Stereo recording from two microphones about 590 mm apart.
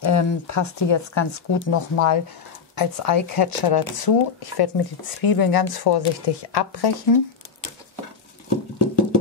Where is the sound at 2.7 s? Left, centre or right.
Left.